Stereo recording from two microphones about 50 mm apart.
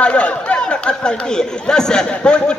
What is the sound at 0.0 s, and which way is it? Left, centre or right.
Speech, left.